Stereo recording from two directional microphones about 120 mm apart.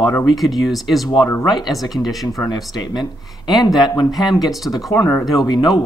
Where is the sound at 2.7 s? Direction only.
35° left (ahead or behind).